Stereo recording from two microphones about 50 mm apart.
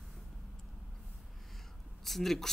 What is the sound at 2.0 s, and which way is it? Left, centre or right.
Speech, centre.